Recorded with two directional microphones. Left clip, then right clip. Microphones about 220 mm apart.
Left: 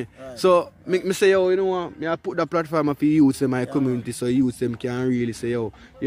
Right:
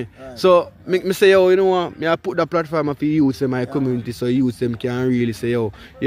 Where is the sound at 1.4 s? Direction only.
15° right (ahead or behind).